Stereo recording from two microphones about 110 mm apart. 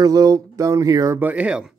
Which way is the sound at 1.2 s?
15° right (ahead or behind).